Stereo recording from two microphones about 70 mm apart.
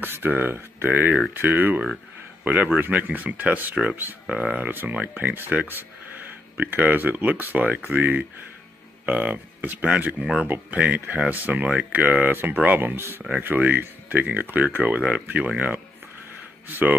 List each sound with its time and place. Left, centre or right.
0.0 s speech: right; by 4.6 s centre
4.6 s speech: right